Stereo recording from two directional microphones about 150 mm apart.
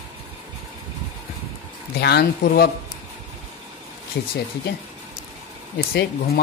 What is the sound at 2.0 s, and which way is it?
Speech, 90° left.